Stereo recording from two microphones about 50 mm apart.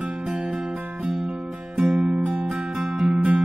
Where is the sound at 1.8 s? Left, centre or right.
Centre.